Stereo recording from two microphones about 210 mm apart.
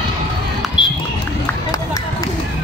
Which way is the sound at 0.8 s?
25° left (ahead or behind).